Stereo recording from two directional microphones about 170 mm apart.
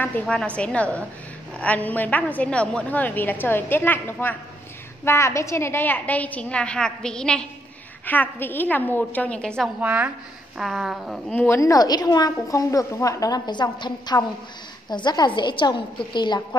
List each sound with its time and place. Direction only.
0.0 s a woman's voice: 10° left (ahead or behind)
9.8 s a woman's voice: 10° right (ahead or behind)
11.3 s a woman's voice: 15° left (ahead or behind)